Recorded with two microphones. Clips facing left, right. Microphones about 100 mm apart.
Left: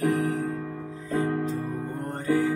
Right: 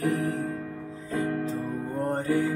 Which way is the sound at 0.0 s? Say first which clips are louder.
Left 2 dB; 30° left (ahead or behind).